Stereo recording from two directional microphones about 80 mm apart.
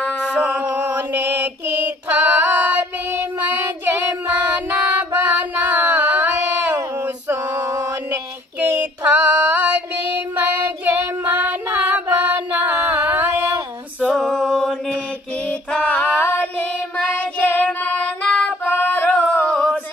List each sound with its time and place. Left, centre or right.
0.2 s a sound: centre
0.8 s mantra: right
2.0 s female singing: right
3.1 s child singing: right
4.5 s singing: right
7.5 s mantra: right
8.1 s female singing: centre
12.7 s music: right
14.0 s a capella: centre
15.7 s female singing: centre
16.2 s child singing: left
18.2 s singing: centre
18.7 s male singing: left